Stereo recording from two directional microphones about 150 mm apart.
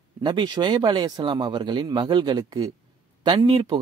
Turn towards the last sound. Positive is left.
turn(degrees=-35)  # may be behind; listen again after turning